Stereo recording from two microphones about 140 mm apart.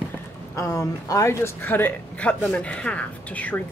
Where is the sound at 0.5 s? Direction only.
25° left (ahead or behind).